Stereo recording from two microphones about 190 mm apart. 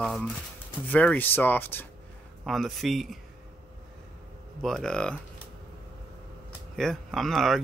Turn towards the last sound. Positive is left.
turn(degrees=0)  # may be behind; listen again after turning